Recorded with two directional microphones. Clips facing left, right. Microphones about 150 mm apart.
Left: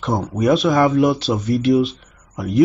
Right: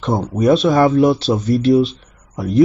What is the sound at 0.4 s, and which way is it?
Speech, 30° right (ahead or behind).